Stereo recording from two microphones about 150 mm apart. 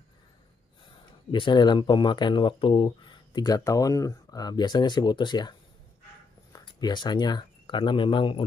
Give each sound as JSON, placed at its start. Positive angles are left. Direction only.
{"t": 1.3, "sound": "speech", "side_deg": 30}